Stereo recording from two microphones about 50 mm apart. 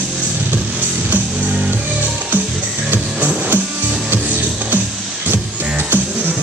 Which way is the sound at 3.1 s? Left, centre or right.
Right.